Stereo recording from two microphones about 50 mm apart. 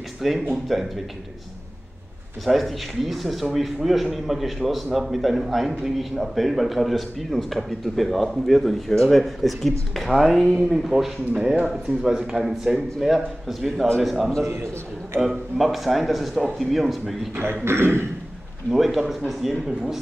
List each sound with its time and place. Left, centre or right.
0.2 s a man's voice: centre
2.4 s a man's voice: centre
17.6 s a man's voice: right
18.7 s a man's voice: centre